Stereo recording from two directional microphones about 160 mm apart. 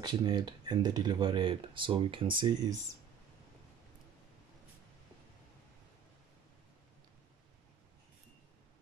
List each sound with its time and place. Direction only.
0.0 s speech: 25° right (ahead or behind)